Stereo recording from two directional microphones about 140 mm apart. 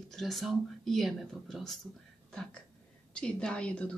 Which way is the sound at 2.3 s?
5° left (ahead or behind).